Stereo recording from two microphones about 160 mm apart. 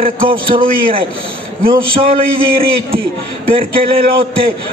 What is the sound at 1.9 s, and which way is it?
Speech, 35° right (ahead or behind).